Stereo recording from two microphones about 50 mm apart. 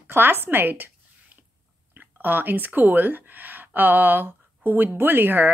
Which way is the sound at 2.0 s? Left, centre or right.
Right.